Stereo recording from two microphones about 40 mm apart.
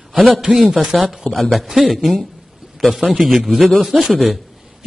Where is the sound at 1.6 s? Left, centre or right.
Centre.